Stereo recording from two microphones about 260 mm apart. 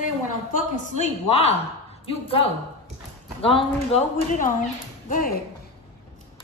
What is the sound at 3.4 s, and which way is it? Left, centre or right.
Speech, left.